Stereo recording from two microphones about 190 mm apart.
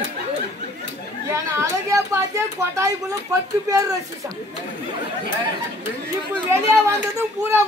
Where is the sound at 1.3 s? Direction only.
15° right (ahead or behind).